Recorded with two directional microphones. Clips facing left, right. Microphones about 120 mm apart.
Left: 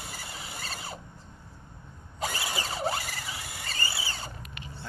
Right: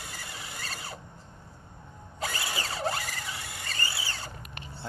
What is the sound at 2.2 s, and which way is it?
Squeal, 5° left (ahead or behind).